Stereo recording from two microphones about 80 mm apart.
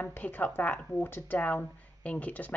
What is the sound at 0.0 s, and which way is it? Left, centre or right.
A woman's voice, left.